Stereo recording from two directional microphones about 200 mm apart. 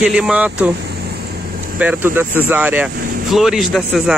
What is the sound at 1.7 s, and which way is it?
Speech, 10° right (ahead or behind).